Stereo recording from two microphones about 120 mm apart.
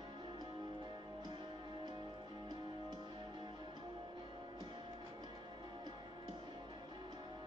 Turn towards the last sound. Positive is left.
turn(degrees=-40)  # may be behind; listen again after turning